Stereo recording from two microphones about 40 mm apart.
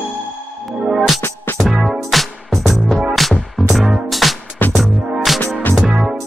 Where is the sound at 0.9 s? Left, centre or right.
Centre.